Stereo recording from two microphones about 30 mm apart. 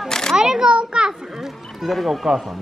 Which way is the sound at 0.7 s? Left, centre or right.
Right.